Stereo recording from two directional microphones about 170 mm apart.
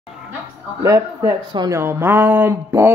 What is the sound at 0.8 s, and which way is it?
Speech, 15° right (ahead or behind).